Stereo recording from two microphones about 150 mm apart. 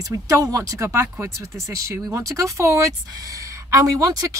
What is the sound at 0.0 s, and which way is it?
A woman's voice, 20° right (ahead or behind).